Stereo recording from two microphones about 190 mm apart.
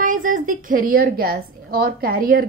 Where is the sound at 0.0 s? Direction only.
45° right (ahead or behind).